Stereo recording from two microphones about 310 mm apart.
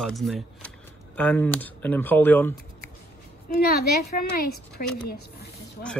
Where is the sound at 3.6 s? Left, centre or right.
Left.